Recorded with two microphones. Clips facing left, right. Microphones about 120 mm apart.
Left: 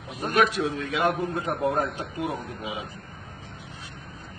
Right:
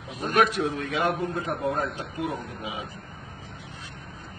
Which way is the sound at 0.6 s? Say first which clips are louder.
Even; 35° right (ahead or behind).